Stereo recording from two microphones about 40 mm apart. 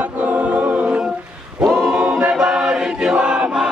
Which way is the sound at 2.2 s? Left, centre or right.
Centre.